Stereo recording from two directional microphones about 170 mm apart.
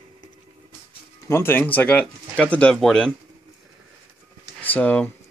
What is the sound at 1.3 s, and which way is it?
Speech, 15° left (ahead or behind).